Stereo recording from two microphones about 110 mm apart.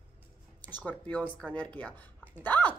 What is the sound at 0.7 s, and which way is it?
A woman's voice, 15° left (ahead or behind).